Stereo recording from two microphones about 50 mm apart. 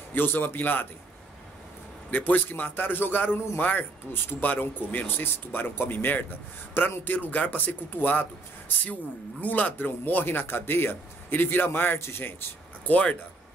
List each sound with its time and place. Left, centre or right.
0.1 s a man's voice: left
2.0 s a man's voice: left
12.8 s a man's voice: left